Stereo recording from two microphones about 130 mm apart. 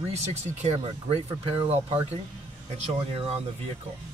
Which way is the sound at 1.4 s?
45° right (ahead or behind).